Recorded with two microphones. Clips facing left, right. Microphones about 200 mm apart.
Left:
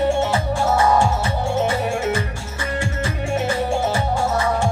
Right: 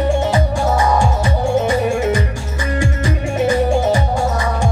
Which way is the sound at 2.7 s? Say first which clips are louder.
Right 5 dB; 15° right (ahead or behind).